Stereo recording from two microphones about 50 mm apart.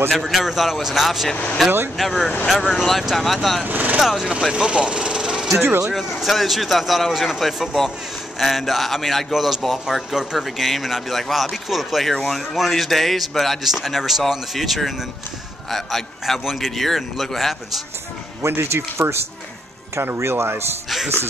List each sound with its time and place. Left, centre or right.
0.1 s speech: centre
1.3 s speech: left
2.0 s speech: centre
3.6 s speech: right
4.0 s speech: centre
4.4 s a sound: centre
5.6 s speech: right
5.9 s speech: centre
18.5 s speech: right